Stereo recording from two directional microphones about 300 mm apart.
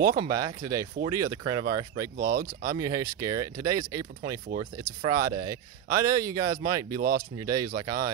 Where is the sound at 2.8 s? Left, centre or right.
Centre.